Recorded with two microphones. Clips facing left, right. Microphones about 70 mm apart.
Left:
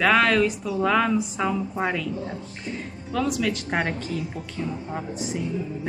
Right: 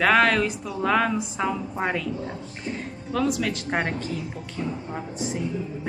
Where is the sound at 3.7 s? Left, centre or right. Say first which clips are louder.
Even; centre.